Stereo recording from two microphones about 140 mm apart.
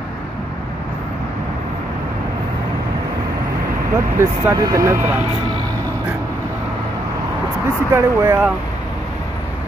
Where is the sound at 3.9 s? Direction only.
20° right (ahead or behind).